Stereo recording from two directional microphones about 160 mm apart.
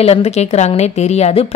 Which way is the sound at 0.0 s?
40° left (ahead or behind).